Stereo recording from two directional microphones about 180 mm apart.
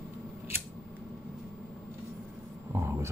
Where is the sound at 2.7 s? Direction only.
15° right (ahead or behind).